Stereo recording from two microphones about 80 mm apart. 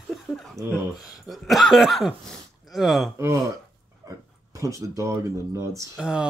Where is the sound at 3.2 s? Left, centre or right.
Right.